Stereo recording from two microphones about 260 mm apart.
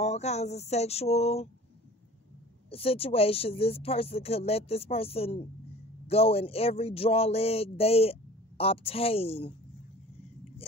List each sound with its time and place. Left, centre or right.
0.0 s speech: left
2.7 s speech: left